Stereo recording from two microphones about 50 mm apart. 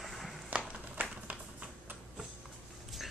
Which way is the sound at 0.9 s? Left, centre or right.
Right.